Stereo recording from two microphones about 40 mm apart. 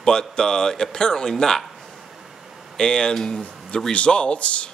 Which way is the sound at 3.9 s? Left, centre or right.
Left.